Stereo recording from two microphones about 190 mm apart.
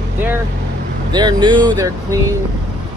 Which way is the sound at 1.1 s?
25° right (ahead or behind).